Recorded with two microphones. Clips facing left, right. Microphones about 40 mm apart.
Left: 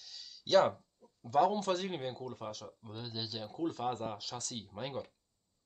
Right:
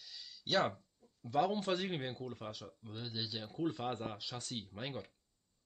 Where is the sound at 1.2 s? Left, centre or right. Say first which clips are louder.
Left 4 dB; centre.